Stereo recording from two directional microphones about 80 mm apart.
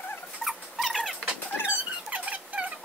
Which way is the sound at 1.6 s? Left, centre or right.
Centre.